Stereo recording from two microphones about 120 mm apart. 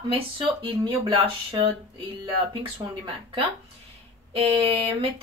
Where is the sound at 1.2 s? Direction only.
45° right (ahead or behind).